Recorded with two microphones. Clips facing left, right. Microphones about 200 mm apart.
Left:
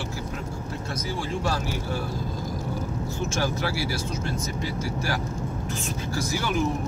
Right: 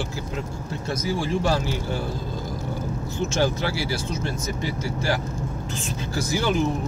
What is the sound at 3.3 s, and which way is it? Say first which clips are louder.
Speech: right 5 dB; 25° right (ahead or behind).